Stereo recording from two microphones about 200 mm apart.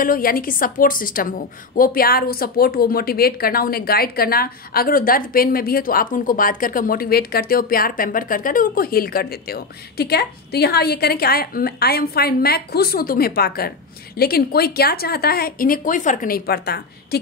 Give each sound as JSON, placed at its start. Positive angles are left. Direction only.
{"t": 0.0, "sound": "a woman's voice", "side_deg": 45}